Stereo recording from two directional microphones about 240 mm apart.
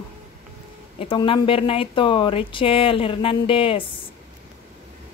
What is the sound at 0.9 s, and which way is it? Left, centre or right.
Speech, left.